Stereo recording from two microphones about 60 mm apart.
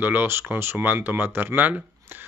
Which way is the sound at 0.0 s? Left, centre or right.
Right.